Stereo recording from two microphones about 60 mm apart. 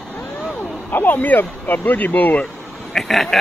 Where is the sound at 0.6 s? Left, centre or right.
Left.